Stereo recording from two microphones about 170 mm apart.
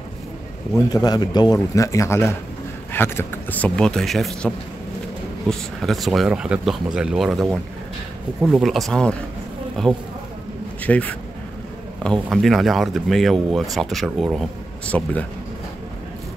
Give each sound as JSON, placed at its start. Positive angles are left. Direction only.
{"t": 0.8, "sound": "a man's voice", "side_deg": 20}
{"t": 10.8, "sound": "speech", "side_deg": 10}